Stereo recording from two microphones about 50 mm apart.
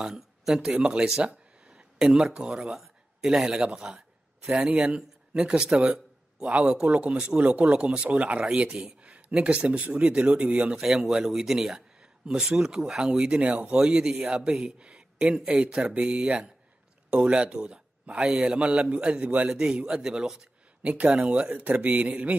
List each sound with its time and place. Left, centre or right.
0.0 s speech: centre
0.7 s speech: centre
6.4 s a man's voice: right
8.5 s speech: centre
8.7 s a man's voice: right
11.1 s speech: centre
13.3 s a man's voice: right
13.7 s a man's voice: centre
19.5 s speech: centre
20.8 s a man's voice: right